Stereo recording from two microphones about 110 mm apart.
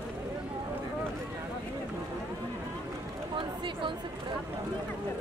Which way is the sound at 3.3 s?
50° right (ahead or behind).